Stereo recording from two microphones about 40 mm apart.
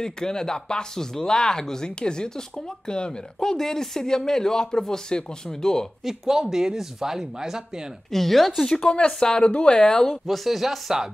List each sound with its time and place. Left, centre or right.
0.0 s speech: centre
6.0 s speech: centre
8.1 s speech: centre
8.6 s speech: centre
9.8 s speech: centre
10.2 s speech: centre